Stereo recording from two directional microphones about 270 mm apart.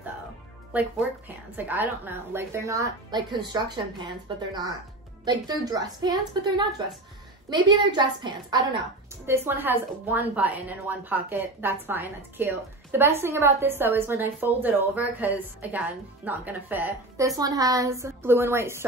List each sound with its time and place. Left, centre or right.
1.6 s a woman's voice: centre